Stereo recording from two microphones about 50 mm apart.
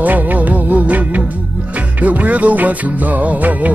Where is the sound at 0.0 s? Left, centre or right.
Right.